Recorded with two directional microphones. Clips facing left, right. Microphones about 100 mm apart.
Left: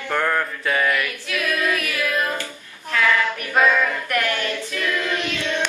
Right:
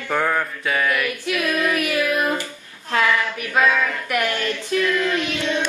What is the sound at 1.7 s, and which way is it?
Music, 20° right (ahead or behind).